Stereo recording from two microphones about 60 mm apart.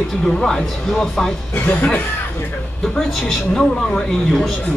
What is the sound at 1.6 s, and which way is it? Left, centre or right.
Speech, left.